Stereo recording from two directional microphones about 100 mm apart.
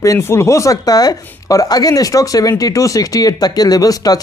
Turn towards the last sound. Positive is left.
turn(degrees=40)  # may be behind; listen again after turning